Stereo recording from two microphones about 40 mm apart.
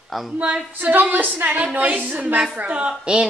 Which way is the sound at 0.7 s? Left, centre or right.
Right.